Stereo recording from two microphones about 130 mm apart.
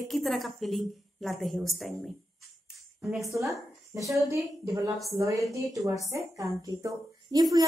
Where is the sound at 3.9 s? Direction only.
20° right (ahead or behind).